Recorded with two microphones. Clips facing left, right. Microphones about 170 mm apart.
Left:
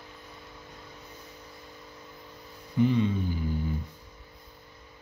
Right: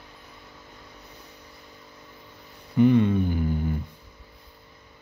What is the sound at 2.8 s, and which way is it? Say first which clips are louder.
Hum: right 6 dB; 60° right (ahead or behind).